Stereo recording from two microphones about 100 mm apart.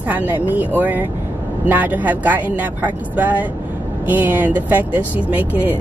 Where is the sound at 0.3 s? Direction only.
20° right (ahead or behind).